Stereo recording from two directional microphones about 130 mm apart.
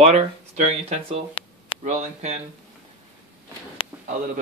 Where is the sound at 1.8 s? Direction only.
70° right (ahead or behind).